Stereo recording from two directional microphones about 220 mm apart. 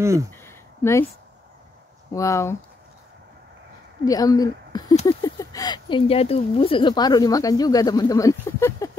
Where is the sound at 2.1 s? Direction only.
15° left (ahead or behind).